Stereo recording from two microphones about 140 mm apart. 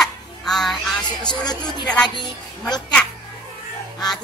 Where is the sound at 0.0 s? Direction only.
Centre (ahead or behind).